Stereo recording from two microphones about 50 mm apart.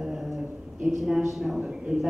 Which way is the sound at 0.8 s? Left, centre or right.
Centre.